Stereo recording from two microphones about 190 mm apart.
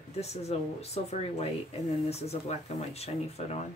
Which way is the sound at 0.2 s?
35° left (ahead or behind).